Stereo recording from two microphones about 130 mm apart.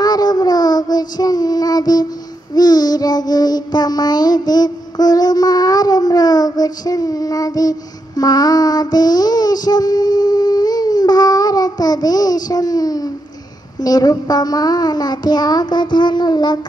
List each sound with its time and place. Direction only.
0.0 s child singing: 30° left (ahead or behind)
13.7 s a child's voice: 30° left (ahead or behind)